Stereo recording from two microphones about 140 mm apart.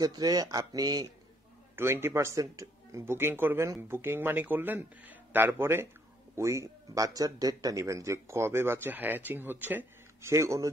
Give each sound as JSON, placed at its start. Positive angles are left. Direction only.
{"t": 0.0, "sound": "speech", "side_deg": -25}
{"t": 1.8, "sound": "speech", "side_deg": -15}